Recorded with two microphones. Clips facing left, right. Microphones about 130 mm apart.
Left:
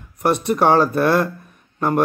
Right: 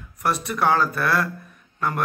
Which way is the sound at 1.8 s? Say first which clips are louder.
Left 7 dB; 40° left (ahead or behind).